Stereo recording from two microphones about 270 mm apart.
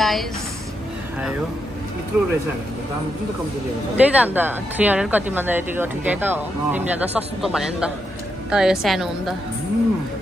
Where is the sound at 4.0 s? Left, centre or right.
Centre.